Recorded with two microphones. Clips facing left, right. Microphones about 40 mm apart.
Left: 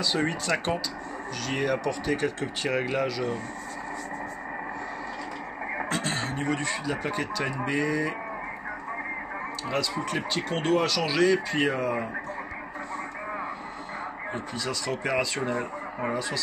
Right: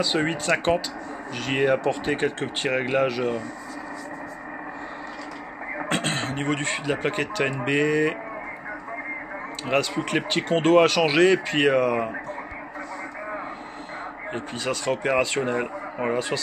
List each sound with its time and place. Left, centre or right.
0.0 s speech: right
5.9 s speech: right
9.7 s speech: right
14.3 s speech: right